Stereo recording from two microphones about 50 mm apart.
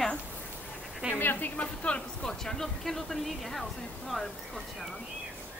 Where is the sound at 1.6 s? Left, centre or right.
Left.